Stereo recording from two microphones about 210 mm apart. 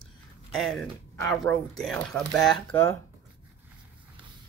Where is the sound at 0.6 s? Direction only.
5° left (ahead or behind).